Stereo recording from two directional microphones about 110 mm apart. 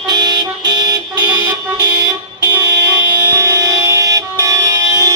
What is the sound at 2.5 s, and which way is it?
Music, 30° right (ahead or behind).